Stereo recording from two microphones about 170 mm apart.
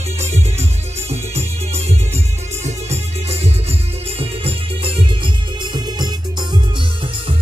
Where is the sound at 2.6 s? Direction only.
40° right (ahead or behind); by 6.6 s 25° right (ahead or behind).